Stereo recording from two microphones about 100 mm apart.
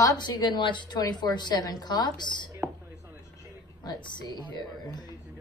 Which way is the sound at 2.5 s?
30° right (ahead or behind).